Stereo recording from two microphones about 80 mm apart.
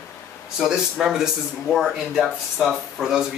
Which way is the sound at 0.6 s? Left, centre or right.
Centre.